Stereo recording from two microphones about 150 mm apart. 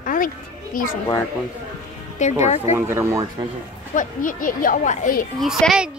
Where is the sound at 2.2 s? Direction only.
55° left (ahead or behind).